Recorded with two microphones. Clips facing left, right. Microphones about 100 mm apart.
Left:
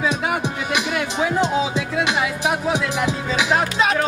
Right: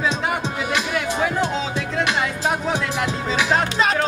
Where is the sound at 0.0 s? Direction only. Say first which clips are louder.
Left 1 dB; 5° left (ahead or behind).